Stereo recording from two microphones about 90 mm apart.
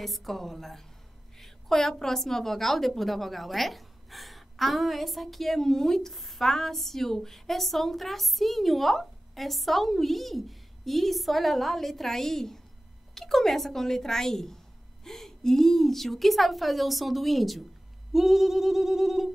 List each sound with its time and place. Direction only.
0.0 s a woman's voice: centre (ahead or behind)